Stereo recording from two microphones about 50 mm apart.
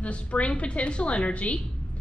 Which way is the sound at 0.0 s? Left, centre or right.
Left.